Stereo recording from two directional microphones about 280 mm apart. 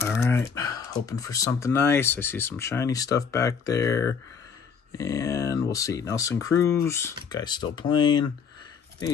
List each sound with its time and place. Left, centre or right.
0.2 s speech: centre